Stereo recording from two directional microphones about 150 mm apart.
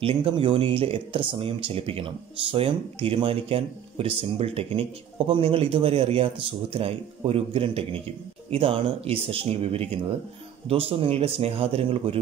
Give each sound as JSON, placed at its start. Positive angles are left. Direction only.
{"t": 0.0, "sound": "speech", "side_deg": -35}